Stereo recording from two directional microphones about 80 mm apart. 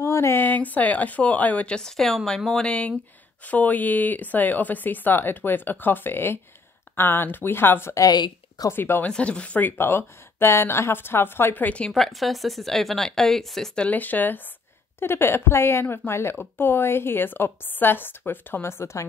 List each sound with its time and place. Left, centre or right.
0.0 s speech: left
7.9 s speech: left
8.6 s speech: left
9.0 s speech: centre
11.9 s speech: centre
13.8 s speech: left